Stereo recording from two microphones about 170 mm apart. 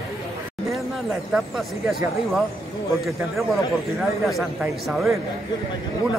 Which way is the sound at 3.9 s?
Centre (ahead or behind).